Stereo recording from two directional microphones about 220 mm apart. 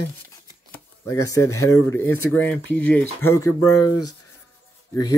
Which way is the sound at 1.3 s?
15° left (ahead or behind).